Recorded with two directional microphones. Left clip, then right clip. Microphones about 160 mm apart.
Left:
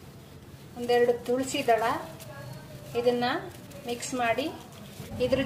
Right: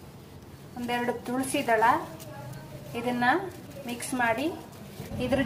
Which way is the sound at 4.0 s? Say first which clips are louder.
Right 1 dB; 15° right (ahead or behind).